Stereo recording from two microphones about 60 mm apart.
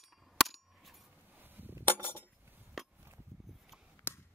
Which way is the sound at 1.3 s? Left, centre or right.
Right.